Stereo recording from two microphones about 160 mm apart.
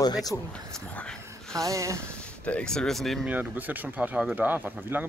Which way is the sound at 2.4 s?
5° left (ahead or behind).